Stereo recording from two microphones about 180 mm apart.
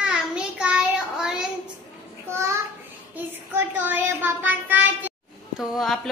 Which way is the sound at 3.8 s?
10° right (ahead or behind).